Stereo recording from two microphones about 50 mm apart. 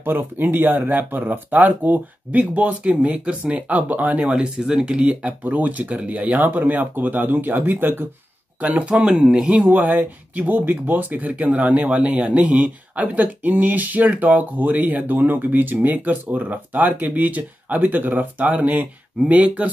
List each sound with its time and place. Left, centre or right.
0.0 s speech: right
5.4 s speech: right
8.5 s speech: right